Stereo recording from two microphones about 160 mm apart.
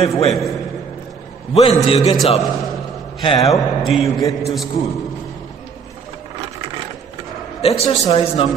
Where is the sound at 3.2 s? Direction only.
25° left (ahead or behind).